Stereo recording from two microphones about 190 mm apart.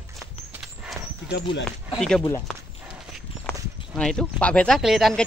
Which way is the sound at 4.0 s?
5° left (ahead or behind).